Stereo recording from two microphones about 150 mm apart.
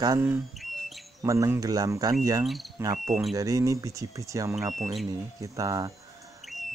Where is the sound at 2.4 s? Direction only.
Centre (ahead or behind).